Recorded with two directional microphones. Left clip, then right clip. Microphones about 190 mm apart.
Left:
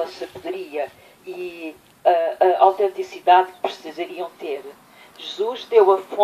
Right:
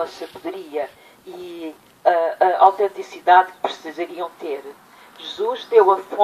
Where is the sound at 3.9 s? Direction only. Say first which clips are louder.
Right 2 dB; 35° left (ahead or behind).